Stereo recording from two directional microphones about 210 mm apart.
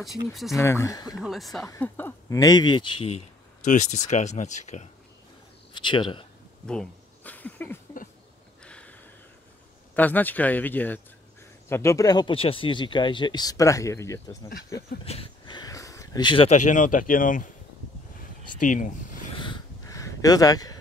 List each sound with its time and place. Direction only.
0.0 s speech: centre (ahead or behind)
0.6 s speech: 15° left (ahead or behind)
1.1 s speech: centre (ahead or behind); by 3.2 s 25° left (ahead or behind)
3.6 s speech: 35° left (ahead or behind)
5.7 s speech: 25° left (ahead or behind)
6.6 s a sound: 5° left (ahead or behind)
9.9 s speech: 10° left (ahead or behind); by 17.5 s 40° left (ahead or behind)
18.6 s speech: 40° left (ahead or behind)
19.3 s a sound: 20° left (ahead or behind)